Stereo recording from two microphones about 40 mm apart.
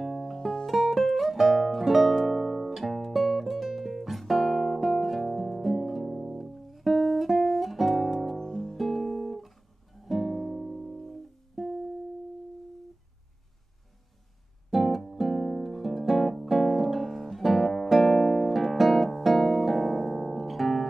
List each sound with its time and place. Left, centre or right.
0.2 s music: centre
8.4 s music: centre
8.7 s music: centre
11.0 s music: centre
14.7 s music: centre